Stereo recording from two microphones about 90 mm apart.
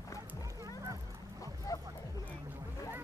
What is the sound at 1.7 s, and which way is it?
Music, 40° left (ahead or behind).